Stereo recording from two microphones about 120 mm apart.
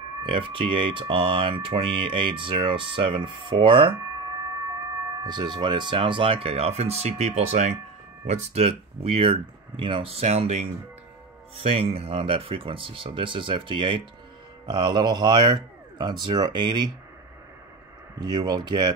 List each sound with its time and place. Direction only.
0.2 s speech: 45° right (ahead or behind)
5.2 s speech: 40° right (ahead or behind); by 7.7 s 70° right (ahead or behind)
8.3 s speech: 60° right (ahead or behind)
11.6 s speech: 55° right (ahead or behind)
18.2 s speech: 35° right (ahead or behind)